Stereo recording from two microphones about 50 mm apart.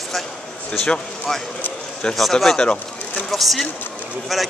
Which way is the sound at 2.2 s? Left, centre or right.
Centre.